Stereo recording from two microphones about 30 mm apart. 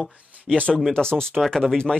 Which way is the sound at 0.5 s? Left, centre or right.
Left.